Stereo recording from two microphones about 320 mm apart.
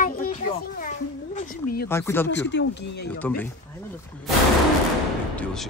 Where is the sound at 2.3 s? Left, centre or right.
Left.